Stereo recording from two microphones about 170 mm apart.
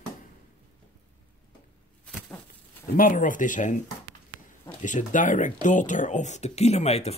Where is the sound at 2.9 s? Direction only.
50° left (ahead or behind).